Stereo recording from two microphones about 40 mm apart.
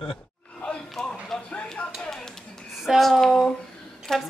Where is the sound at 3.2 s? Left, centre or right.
Centre.